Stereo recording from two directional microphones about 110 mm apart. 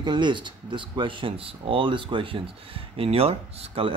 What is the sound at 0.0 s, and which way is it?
Speech, 45° right (ahead or behind).